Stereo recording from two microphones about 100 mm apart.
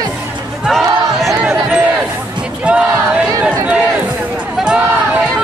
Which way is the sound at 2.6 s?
10° right (ahead or behind).